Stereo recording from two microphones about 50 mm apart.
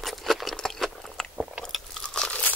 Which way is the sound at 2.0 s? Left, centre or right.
Centre.